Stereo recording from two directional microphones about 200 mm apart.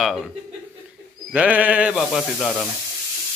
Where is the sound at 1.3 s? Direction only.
5° right (ahead or behind).